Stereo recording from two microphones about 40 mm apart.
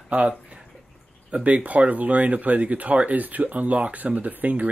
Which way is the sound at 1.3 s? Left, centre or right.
Right.